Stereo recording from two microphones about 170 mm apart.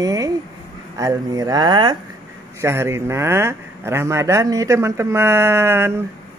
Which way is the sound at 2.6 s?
15° right (ahead or behind).